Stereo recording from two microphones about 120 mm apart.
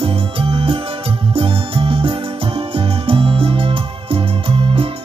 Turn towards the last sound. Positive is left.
turn(degrees=-50)  # may be behind; listen again after turning